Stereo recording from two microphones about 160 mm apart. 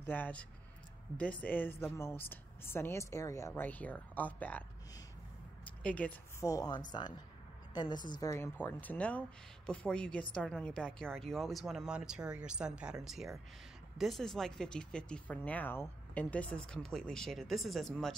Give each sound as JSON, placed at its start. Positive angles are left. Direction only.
{"t": 0.0, "sound": "speech", "side_deg": 10}
{"t": 5.8, "sound": "a woman's voice", "side_deg": 10}
{"t": 6.4, "sound": "speech", "side_deg": 25}